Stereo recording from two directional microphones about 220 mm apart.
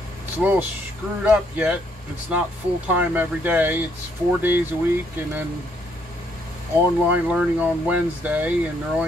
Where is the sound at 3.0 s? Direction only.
10° right (ahead or behind).